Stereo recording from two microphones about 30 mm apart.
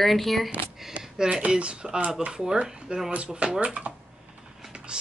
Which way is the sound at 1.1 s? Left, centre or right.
Right.